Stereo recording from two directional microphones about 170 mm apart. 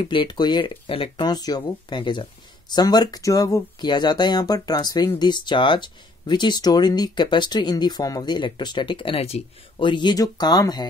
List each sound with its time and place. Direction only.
0.0 s speech: 30° left (ahead or behind)